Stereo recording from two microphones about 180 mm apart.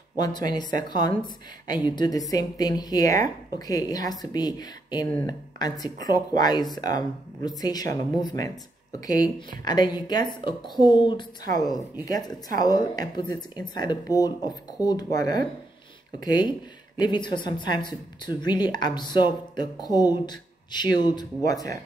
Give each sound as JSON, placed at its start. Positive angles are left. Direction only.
{"t": 0.5, "sound": "speech", "side_deg": 25}